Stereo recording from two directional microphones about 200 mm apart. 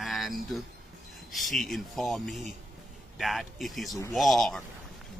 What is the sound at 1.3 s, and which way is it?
A man's voice, centre (ahead or behind).